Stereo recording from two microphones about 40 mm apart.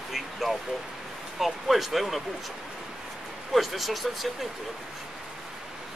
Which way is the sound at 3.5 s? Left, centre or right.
Centre.